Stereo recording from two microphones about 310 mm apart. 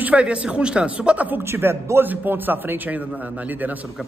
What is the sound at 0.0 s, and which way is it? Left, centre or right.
A man's voice, centre.